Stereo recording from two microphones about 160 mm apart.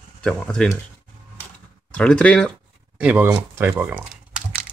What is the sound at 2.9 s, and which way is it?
Speech, 10° right (ahead or behind).